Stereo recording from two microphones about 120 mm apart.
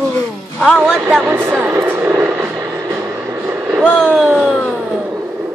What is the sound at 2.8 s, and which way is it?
Vehicle, 30° right (ahead or behind).